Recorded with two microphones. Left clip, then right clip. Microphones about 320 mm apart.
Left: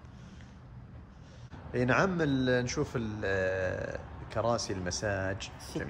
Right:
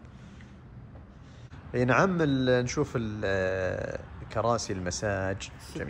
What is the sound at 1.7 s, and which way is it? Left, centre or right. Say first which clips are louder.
A man's voice: right 3 dB; centre.